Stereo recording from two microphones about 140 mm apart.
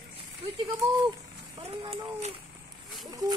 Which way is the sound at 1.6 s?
45° right (ahead or behind).